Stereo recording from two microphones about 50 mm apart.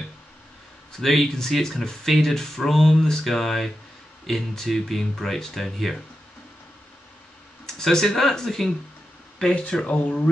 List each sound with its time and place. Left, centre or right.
1.0 s speech: centre
7.6 s speech: centre